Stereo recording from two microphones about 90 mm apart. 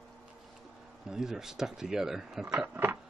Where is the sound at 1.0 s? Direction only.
5° right (ahead or behind).